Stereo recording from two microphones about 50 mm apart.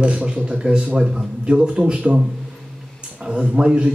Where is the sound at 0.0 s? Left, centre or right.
Centre.